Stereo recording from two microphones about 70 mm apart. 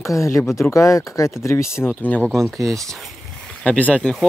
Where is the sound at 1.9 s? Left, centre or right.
Left.